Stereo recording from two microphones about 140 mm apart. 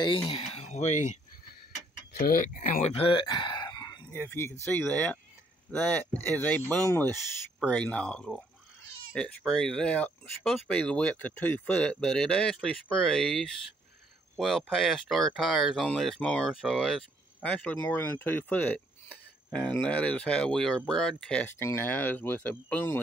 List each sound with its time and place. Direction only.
0.4 s speech: 50° left (ahead or behind)
2.1 s speech: 90° left; by 2.8 s 75° left (ahead or behind)
2.8 s a sound: 45° left (ahead or behind); by 4.1 s 30° left (ahead or behind)
4.1 s speech: 20° left (ahead or behind); by 13.5 s centre (ahead or behind)
14.7 s speech: centre (ahead or behind)